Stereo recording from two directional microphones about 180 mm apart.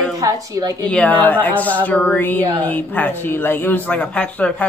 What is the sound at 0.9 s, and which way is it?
A woman's voice, 10° left (ahead or behind).